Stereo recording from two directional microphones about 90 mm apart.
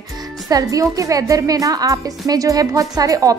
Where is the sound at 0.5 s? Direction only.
40° right (ahead or behind).